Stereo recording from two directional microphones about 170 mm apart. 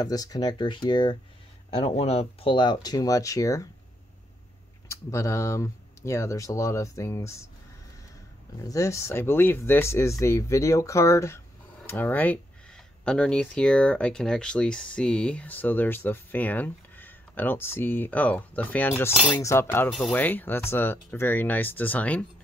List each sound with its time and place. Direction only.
0.0 s speech: 20° left (ahead or behind)
4.8 s speech: 15° left (ahead or behind)
8.5 s speech: 20° left (ahead or behind)